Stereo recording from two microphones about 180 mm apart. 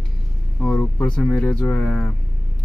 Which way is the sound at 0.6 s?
10° left (ahead or behind).